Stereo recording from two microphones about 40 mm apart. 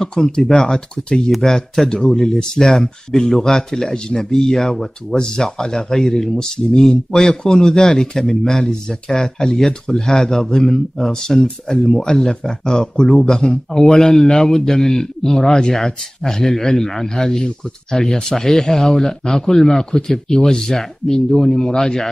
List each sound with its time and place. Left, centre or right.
0.0 s speech: centre
1.2 s speech: centre